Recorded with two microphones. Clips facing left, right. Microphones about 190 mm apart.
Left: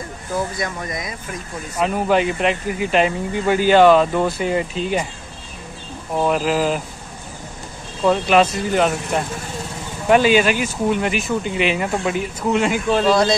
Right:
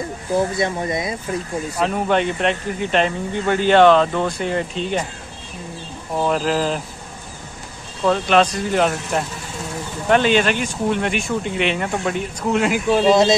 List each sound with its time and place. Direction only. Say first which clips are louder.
0.3 s speech: right 4 dB; 30° right (ahead or behind)
1.8 s speech: left 2 dB; 5° left (ahead or behind)
6.1 s speech: left 1 dB; 5° left (ahead or behind)
8.0 s speech: left 1 dB; 5° left (ahead or behind)